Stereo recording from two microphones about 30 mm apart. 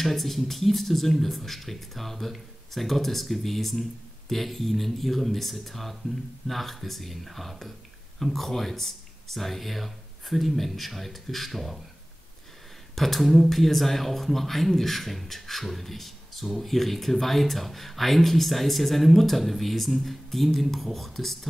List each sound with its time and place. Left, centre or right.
0.0 s speech: centre
12.9 s speech: centre